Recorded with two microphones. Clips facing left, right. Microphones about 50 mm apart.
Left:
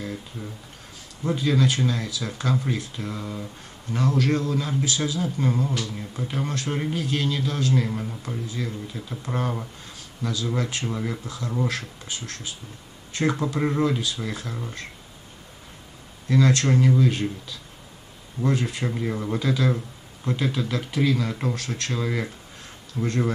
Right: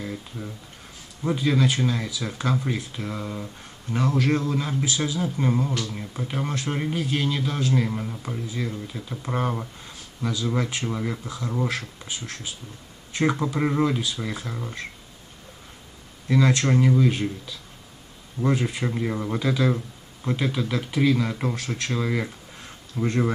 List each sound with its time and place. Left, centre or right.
0.0 s a sound: centre
1.2 s speech: centre
16.3 s speech: centre